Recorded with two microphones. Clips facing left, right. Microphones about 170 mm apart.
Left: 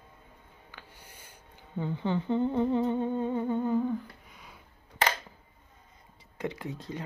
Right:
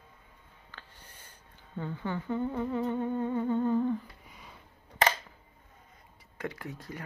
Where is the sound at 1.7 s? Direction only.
20° left (ahead or behind); by 4.6 s centre (ahead or behind).